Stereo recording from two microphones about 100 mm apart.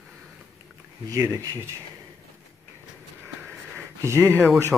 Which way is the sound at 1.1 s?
30° right (ahead or behind).